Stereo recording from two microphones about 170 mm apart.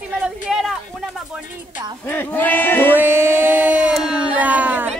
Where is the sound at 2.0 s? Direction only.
10° left (ahead or behind).